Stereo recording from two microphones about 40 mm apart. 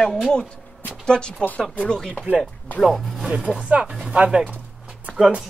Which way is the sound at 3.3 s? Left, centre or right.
Right.